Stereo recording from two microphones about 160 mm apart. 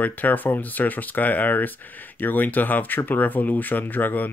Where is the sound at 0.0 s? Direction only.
10° left (ahead or behind).